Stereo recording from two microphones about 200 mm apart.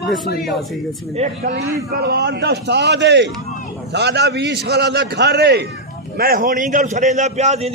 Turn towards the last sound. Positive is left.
turn(degrees=-35)  # may be behind; listen again after turning